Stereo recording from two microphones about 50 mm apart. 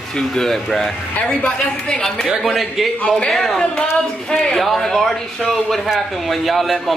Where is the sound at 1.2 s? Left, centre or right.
Centre.